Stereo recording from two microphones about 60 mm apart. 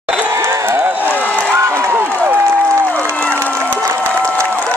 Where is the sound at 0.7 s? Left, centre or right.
Right.